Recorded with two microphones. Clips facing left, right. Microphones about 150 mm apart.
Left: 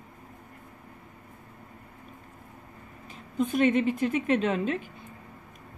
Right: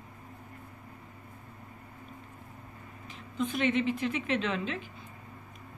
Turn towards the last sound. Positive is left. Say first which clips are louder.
# left 6 dB
turn(degrees=45)  # may be behind; listen again after turning